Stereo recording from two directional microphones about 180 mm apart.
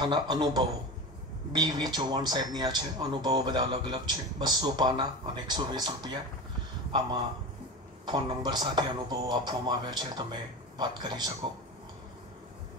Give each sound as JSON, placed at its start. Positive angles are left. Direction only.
{"t": 0.0, "sound": "speech", "side_deg": -25}
{"t": 8.0, "sound": "speech", "side_deg": -25}